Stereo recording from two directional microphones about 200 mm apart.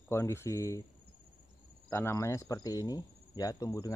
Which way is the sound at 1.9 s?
15° left (ahead or behind).